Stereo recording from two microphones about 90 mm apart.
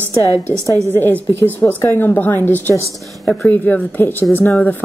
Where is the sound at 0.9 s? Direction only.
25° left (ahead or behind).